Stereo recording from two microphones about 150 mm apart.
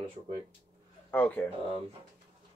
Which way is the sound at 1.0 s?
10° left (ahead or behind).